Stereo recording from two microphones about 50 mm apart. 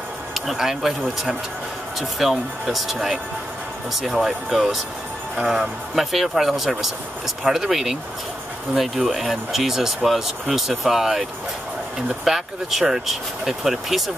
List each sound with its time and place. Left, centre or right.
0.3 s speech: centre